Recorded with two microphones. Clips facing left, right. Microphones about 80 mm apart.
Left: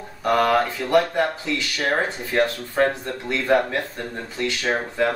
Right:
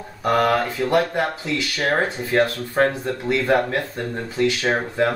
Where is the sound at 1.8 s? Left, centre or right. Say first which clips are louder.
Right 2 dB; centre.